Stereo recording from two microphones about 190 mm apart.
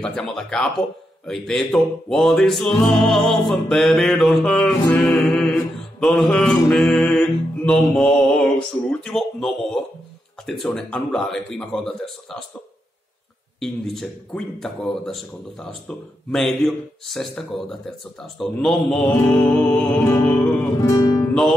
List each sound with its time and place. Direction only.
0.0 s speech: 5° left (ahead or behind)
13.6 s speech: centre (ahead or behind)
20.8 s music: 20° left (ahead or behind)
21.3 s music: centre (ahead or behind)